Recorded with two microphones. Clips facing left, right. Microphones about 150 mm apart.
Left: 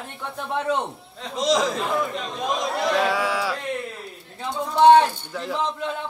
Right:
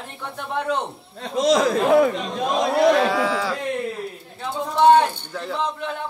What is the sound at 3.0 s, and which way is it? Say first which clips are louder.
Speech: right 2 dB; 10° left (ahead or behind).